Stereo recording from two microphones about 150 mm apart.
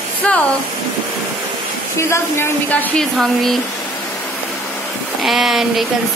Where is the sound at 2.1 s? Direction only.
15° left (ahead or behind).